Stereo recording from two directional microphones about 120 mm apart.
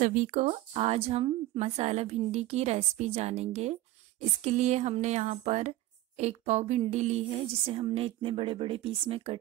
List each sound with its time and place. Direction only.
0.0 s a woman's voice: 90° right; by 9.4 s 50° right (ahead or behind)